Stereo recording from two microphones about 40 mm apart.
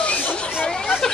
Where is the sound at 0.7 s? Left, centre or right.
Centre.